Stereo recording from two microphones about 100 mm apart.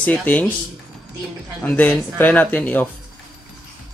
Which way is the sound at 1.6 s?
15° left (ahead or behind).